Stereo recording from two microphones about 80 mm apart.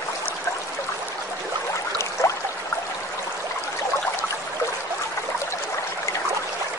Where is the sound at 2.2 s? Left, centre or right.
Left.